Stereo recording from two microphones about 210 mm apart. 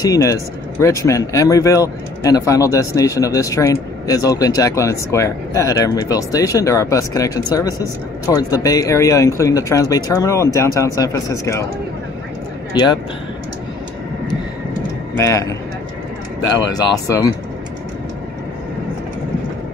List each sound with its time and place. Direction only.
0.0 s speech: 15° left (ahead or behind)
12.7 s a man's voice: 20° left (ahead or behind)
15.1 s speech: 15° left (ahead or behind)